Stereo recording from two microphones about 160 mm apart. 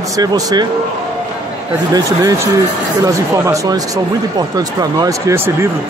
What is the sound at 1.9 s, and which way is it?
Speech, 20° right (ahead or behind).